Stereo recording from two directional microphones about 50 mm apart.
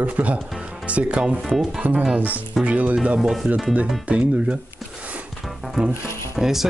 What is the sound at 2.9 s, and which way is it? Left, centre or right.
Speech, centre.